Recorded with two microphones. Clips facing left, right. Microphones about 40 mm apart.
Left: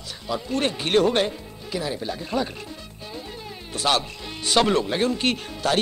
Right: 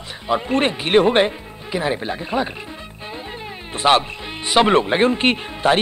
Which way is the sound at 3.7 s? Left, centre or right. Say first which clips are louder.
Right 7 dB; right.